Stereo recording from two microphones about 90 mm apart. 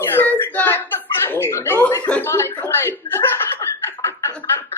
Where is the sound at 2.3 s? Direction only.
30° left (ahead or behind).